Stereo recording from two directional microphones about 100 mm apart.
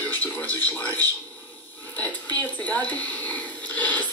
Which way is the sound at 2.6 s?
15° left (ahead or behind).